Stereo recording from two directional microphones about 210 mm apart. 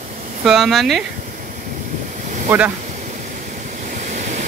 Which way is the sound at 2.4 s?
5° right (ahead or behind).